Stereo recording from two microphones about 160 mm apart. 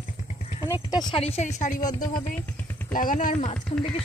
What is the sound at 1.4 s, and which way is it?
Speech, 50° left (ahead or behind).